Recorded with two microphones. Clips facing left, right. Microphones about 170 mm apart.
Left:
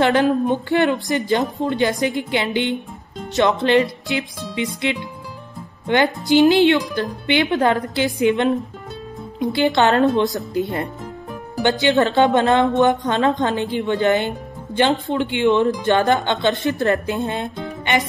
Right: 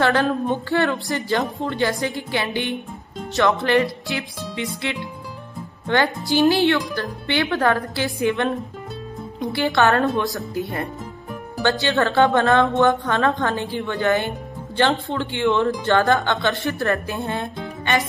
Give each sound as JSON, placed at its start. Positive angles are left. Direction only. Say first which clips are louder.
{"t": 0.0, "sound": "a woman's voice", "louder": "left 3 dB", "side_deg": 20}